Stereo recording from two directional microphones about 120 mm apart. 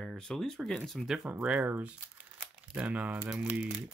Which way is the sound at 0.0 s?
5° left (ahead or behind).